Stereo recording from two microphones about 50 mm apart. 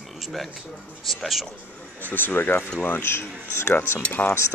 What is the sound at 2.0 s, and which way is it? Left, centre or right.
Speech, left.